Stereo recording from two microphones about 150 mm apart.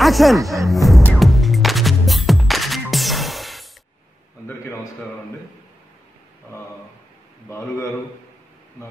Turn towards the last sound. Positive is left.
turn(degrees=20)  # may be behind; listen again after turning